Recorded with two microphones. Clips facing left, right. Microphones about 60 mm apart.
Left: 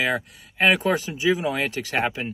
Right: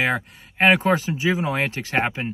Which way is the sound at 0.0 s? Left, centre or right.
Right.